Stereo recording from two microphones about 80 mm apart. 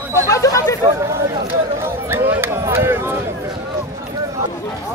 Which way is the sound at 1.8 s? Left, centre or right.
Right.